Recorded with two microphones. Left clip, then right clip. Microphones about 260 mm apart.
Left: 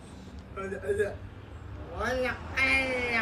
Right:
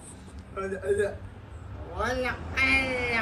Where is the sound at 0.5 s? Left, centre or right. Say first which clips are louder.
Right 3 dB; centre.